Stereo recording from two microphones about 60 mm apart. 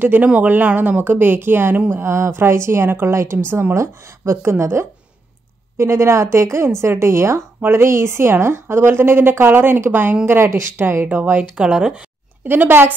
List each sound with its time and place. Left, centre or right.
0.0 s a woman's voice: right
3.7 s a woman's voice: right
11.1 s a woman's voice: right
11.5 s speech: centre
12.4 s a woman's voice: right